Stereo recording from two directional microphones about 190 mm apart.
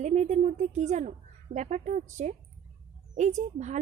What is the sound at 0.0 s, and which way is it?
A woman's voice, 40° right (ahead or behind).